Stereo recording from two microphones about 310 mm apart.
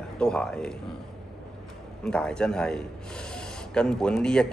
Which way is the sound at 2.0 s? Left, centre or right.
Centre.